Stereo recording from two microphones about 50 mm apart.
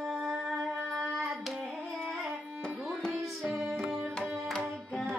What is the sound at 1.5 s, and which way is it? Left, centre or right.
Carnatic music, centre.